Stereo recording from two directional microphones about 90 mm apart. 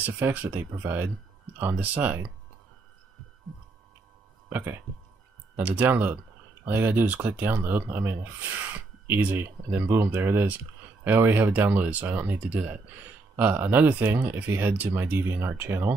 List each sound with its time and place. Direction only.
0.0 s speech: 20° right (ahead or behind)
4.5 s speech: 20° right (ahead or behind)